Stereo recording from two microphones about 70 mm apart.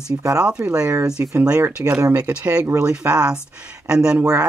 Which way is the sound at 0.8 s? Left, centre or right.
Right.